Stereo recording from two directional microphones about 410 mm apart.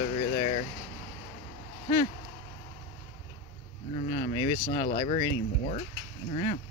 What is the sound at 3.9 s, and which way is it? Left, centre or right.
Speech, centre.